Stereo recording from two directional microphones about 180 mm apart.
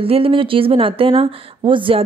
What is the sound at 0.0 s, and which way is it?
Speech, 30° right (ahead or behind).